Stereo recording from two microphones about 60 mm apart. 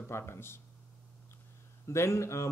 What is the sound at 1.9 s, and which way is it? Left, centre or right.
Speech, left.